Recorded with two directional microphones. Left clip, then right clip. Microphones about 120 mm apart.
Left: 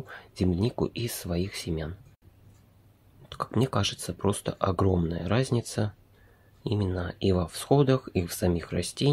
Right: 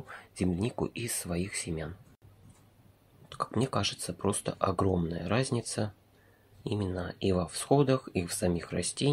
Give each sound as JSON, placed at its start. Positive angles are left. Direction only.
{"t": 0.0, "sound": "speech", "side_deg": 20}
{"t": 3.3, "sound": "speech", "side_deg": 15}